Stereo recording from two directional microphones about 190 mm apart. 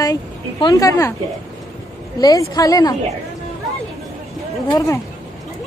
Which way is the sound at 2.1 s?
20° left (ahead or behind).